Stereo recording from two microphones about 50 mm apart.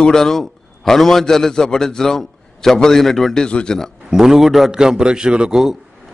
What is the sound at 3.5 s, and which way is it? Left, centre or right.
Speech, left.